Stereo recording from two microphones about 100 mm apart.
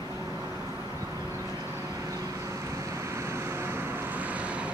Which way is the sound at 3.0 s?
25° right (ahead or behind).